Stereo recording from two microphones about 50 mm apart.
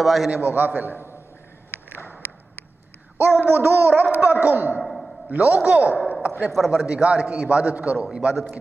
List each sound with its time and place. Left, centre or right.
0.0 s a man's voice: centre
0.4 s a man's voice: right
3.3 s babbling: right
4.8 s a sound: centre
5.3 s a man's voice: right
6.5 s a man's voice: centre
6.8 s a man's voice: right
8.0 s speech: centre